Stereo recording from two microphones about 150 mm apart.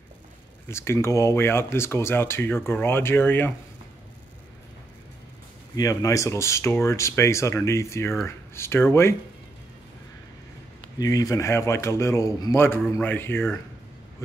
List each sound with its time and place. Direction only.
0.7 s speech: 20° left (ahead or behind)
5.8 s speech: 20° left (ahead or behind)
11.0 s speech: 25° left (ahead or behind)